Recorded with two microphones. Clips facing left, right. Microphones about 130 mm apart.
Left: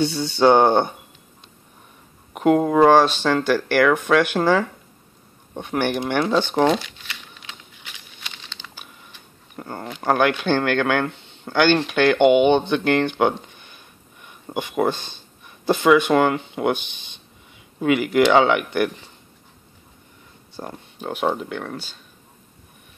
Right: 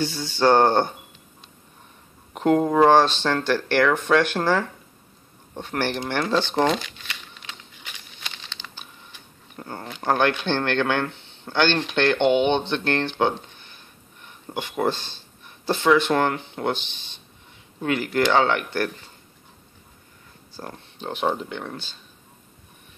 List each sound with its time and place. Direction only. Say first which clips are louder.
0.2 s speech: left 2 dB; 15° left (ahead or behind)
2.3 s speech: left 2 dB; 5° left (ahead or behind)
8.2 s crumpling: right 1 dB; 5° left (ahead or behind)
9.6 s speech: left 3 dB; 10° left (ahead or behind)
14.2 s a sound: left 3 dB; 15° left (ahead or behind)
14.9 s speech: left 1 dB; 15° left (ahead or behind)
20.6 s speech: left 3 dB; 15° left (ahead or behind)